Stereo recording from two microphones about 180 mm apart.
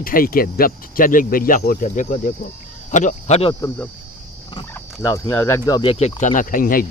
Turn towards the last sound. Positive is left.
turn(degrees=50)  # may be behind; listen again after turning